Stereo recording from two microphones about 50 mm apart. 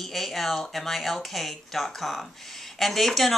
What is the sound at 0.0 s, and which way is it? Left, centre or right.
Speech, centre.